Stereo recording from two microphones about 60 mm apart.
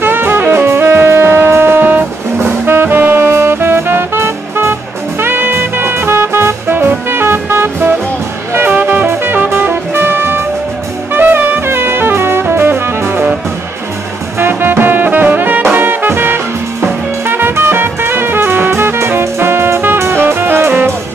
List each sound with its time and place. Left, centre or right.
0.0 s saxophone: right
2.3 s music: right
14.4 s music: right